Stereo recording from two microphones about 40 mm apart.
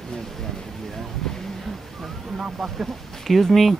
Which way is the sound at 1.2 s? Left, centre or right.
Centre.